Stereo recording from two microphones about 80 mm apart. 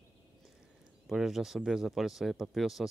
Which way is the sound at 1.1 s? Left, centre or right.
Centre.